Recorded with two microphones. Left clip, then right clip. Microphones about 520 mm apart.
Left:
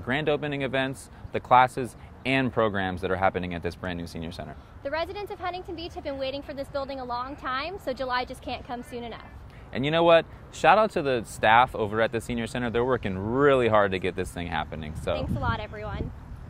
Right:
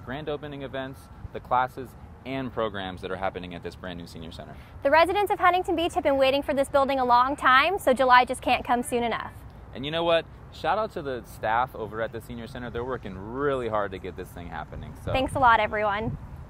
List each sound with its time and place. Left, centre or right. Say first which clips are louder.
0.0 s speech: left 7 dB; left
4.8 s a woman's voice: right 11 dB; right
9.7 s speech: left 5 dB; left
15.1 s a woman's voice: right 16 dB; right